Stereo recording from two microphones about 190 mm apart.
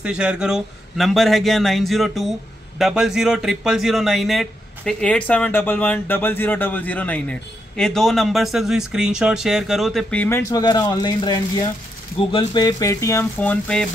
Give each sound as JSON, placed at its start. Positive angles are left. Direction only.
{"t": 0.0, "sound": "a man's voice", "side_deg": -5}